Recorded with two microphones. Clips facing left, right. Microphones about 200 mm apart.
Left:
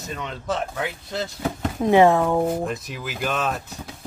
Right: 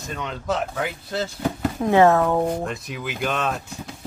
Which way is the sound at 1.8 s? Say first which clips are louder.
Left 1 dB; 15° left (ahead or behind).